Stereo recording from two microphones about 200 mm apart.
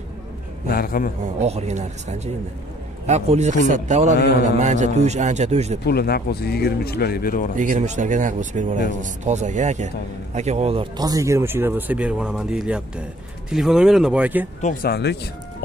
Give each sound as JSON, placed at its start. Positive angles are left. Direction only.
{"t": 0.7, "sound": "speech", "side_deg": 45}
{"t": 1.2, "sound": "a man's voice", "side_deg": -30}
{"t": 5.9, "sound": "speech", "side_deg": 50}
{"t": 7.5, "sound": "a man's voice", "side_deg": -40}
{"t": 14.6, "sound": "speech", "side_deg": 45}